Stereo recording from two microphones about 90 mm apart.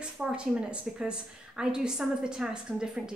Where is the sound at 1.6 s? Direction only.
10° right (ahead or behind).